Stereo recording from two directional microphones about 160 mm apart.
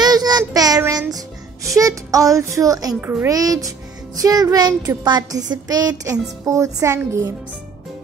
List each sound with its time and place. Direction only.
0.0 s child singing: 25° right (ahead or behind)
0.8 s music: 20° right (ahead or behind)
3.0 s a child's voice: 15° right (ahead or behind)